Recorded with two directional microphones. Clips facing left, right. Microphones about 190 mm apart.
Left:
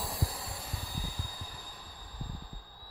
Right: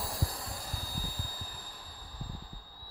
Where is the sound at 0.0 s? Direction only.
Centre (ahead or behind).